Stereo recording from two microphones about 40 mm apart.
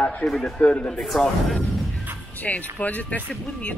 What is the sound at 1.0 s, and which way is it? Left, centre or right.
Speech, centre.